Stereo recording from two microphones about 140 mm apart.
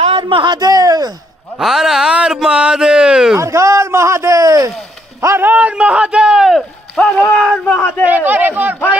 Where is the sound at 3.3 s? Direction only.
20° right (ahead or behind).